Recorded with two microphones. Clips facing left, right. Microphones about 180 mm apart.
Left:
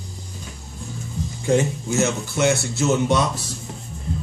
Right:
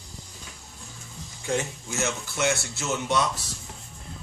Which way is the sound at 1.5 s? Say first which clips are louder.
Left 9 dB; 30° left (ahead or behind).